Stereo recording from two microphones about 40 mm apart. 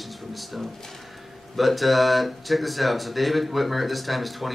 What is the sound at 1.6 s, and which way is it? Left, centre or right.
Speech, centre.